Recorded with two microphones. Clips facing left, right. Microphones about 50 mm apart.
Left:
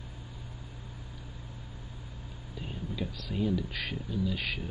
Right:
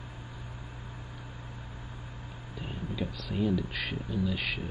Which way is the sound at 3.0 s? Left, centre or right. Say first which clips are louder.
Right 1 dB; centre.